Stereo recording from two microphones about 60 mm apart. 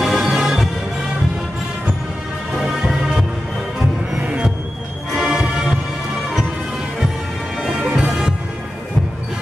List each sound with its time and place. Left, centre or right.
0.0 s music: centre
2.5 s music: centre
4.2 s music: right
5.2 s music: centre
7.6 s bagpipes: centre